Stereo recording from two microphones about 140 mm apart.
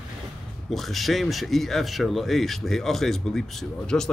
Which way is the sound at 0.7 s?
Centre (ahead or behind).